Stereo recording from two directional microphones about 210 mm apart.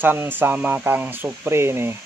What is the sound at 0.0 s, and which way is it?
Speech, 10° right (ahead or behind).